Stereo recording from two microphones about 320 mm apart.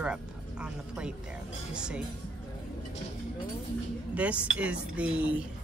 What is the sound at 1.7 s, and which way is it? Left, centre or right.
Speech, centre.